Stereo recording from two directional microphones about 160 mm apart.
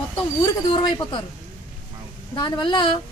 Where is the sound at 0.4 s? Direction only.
30° left (ahead or behind).